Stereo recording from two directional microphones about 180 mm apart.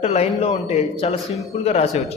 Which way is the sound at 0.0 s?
35° left (ahead or behind).